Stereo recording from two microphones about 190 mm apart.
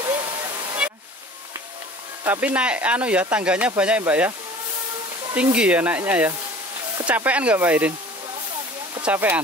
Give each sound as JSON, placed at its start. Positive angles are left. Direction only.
{"t": 0.0, "sound": "waterfall", "side_deg": -25}
{"t": 2.2, "sound": "speech", "side_deg": -10}
{"t": 5.3, "sound": "speech", "side_deg": -5}
{"t": 9.0, "sound": "speech", "side_deg": -10}